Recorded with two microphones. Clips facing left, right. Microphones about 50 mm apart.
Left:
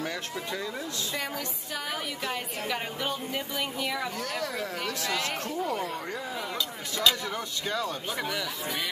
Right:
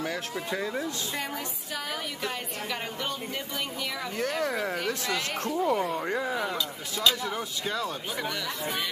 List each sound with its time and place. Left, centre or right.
0.5 s speech: centre
2.2 s speech: centre
4.2 s speech: right
6.3 s speech: centre